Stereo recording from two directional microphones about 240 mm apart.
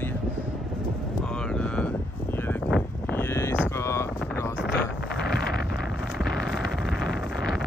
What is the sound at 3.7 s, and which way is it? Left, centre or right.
Vehicle, centre.